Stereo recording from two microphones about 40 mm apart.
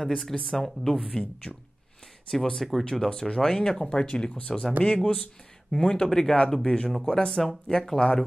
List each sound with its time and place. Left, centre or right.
0.2 s speech: centre
1.5 s speech: left
2.5 s speech: centre
2.8 s speech: centre